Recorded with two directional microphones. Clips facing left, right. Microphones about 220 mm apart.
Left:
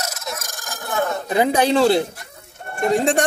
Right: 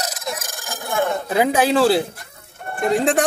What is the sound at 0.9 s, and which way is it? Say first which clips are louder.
Speech: right 1 dB; 10° right (ahead or behind).